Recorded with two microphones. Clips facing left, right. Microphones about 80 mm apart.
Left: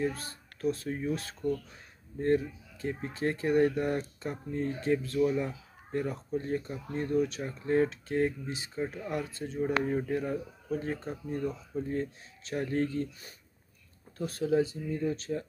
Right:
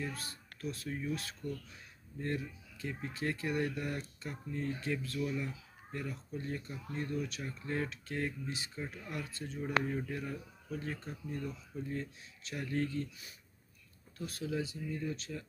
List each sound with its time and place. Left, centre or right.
0.0 s speech: left